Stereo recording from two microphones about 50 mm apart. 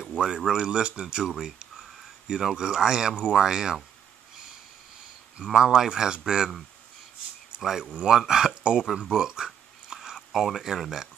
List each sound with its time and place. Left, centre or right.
0.0 s a sound: centre
0.5 s speech: centre
5.4 s speech: centre
7.6 s speech: centre
8.8 s speech: centre
9.1 s a sound: centre
10.1 s speech: centre